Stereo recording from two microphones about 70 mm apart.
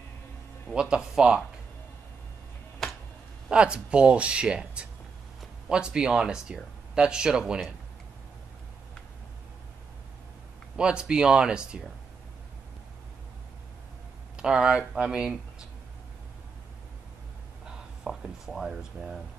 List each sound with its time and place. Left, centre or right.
0.7 s speech: centre
2.8 s a sound: centre
3.4 s speech: centre
10.8 s speech: centre
14.3 s speech: centre
17.6 s a sound: centre